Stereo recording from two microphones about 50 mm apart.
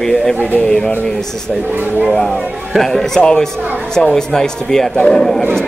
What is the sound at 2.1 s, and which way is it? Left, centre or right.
Speech, centre.